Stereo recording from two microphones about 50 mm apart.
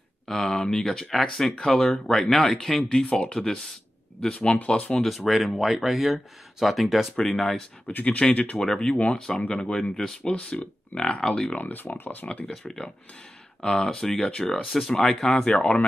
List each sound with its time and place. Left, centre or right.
0.3 s speech: centre
2.9 s speech: centre
5.0 s speech: centre
8.0 s speech: left
8.9 s speech: centre
11.6 s speech: left
12.4 s speech: centre
15.5 s speech: left